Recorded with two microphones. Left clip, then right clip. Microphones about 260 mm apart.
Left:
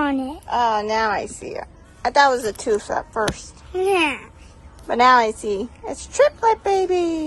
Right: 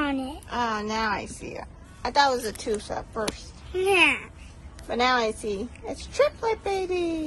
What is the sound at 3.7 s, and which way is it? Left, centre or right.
Speech, left.